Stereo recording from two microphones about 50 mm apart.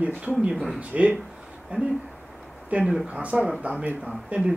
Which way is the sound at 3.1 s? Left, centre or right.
Right.